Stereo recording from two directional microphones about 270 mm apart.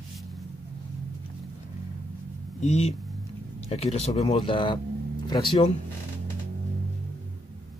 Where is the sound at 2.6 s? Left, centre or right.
Left.